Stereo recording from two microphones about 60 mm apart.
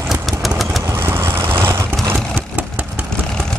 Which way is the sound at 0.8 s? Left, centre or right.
Right.